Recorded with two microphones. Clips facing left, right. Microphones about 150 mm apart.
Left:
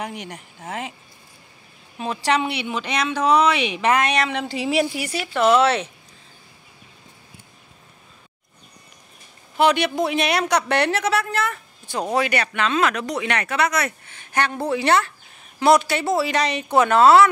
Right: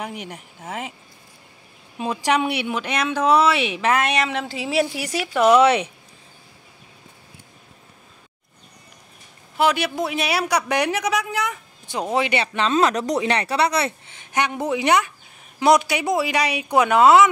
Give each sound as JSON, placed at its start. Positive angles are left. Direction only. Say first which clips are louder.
{"t": 0.0, "sound": "speech", "louder": "even", "side_deg": -5}
{"t": 2.0, "sound": "speech", "louder": "right 1 dB", "side_deg": -10}
{"t": 9.6, "sound": "speech", "louder": "left 2 dB", "side_deg": -5}